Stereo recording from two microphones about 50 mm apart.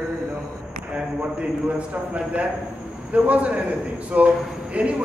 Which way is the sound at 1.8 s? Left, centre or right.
Right.